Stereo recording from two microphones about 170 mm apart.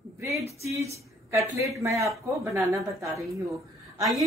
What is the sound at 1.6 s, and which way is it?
Speech, 20° right (ahead or behind).